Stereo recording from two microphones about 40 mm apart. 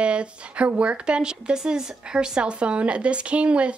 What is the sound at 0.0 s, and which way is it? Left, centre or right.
Speech, right.